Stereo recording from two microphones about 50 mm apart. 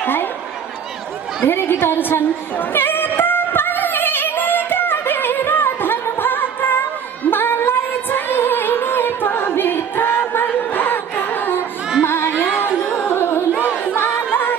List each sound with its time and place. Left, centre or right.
0.0 s a sound: left
1.4 s a woman's voice: left
2.5 s music: left
12.0 s music: left
13.0 s carnatic music: left
13.9 s music: left